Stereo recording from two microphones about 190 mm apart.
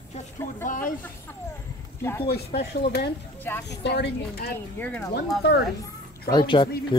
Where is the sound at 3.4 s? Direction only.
10° left (ahead or behind).